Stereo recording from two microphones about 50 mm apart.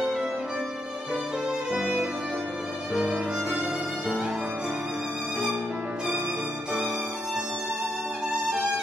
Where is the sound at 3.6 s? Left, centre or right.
Right.